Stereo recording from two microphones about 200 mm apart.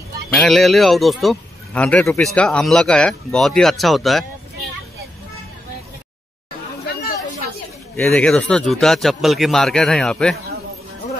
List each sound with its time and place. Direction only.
0.3 s speech: centre (ahead or behind)
6.9 s chatter: 50° left (ahead or behind)
7.9 s speech: 10° left (ahead or behind)